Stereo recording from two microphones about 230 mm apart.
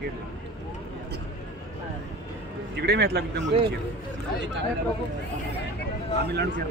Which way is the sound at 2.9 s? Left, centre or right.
Right.